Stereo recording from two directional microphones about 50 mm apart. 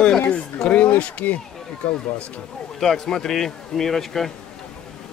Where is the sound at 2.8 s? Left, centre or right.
Centre.